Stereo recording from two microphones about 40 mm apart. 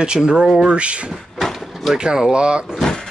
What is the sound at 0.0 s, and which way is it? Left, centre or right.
Speech, right.